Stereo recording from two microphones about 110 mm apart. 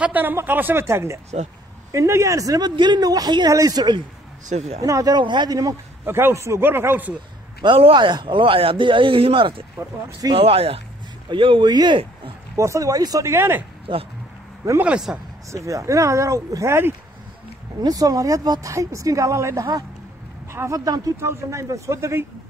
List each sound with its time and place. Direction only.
0.0 s speech: 15° right (ahead or behind); by 2.7 s 35° right (ahead or behind)
2.7 s speech: 45° right (ahead or behind)
4.5 s speech: 90° right
4.8 s speech: 35° right (ahead or behind)
6.0 s speech: 20° right (ahead or behind)
7.6 s speech: 50° right (ahead or behind)
11.2 s speech: 50° right (ahead or behind)
12.5 s speech: 30° right (ahead or behind)
13.9 s speech: 50° right (ahead or behind)
14.8 s speech: 10° right (ahead or behind)
15.5 s speech: 30° right (ahead or behind)